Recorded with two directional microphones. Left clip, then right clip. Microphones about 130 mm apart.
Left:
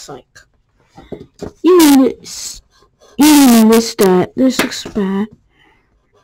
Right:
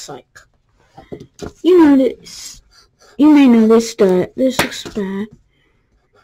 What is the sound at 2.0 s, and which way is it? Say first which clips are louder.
Speech: left 2 dB; 35° left (ahead or behind).